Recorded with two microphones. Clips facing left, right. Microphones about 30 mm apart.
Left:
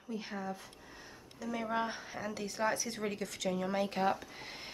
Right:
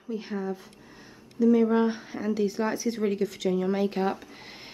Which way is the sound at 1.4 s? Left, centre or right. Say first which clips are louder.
Right 14 dB; centre.